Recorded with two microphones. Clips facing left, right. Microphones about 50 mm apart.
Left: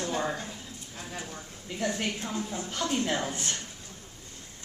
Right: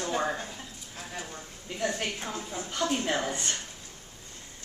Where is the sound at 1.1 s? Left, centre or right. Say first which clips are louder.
Even; centre.